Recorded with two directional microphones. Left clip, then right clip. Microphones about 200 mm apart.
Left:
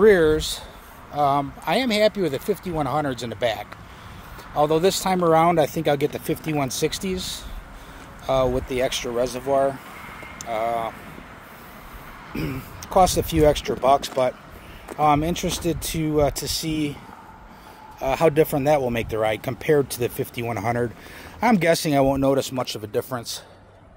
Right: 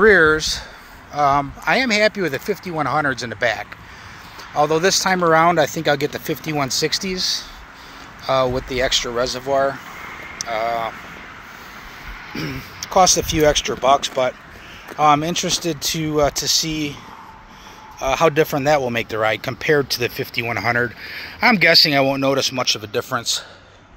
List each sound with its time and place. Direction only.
0.0 s speech: centre (ahead or behind)
4.6 s speech: centre (ahead or behind)
8.3 s speech: 5° left (ahead or behind)
12.4 s speech: 5° left (ahead or behind)
17.9 s speech: 15° left (ahead or behind)